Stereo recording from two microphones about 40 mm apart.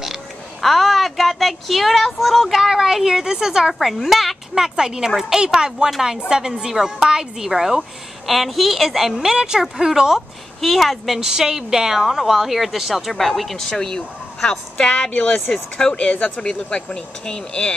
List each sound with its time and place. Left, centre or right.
0.6 s speech: centre
3.8 s speech: centre
4.6 s speech: centre
5.9 s speech: centre
8.3 s speech: centre
9.2 s speech: centre
10.6 s speech: centre
11.1 s speech: centre; by 16.4 s left
16.4 s speech: left